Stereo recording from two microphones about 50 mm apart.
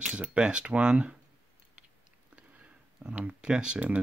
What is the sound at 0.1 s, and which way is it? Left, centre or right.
Speech, right.